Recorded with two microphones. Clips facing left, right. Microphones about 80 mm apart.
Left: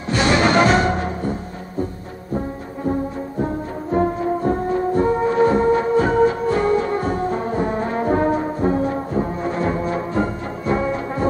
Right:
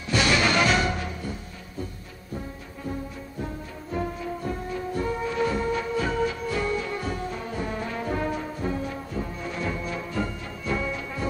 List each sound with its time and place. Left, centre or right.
0.1 s music: left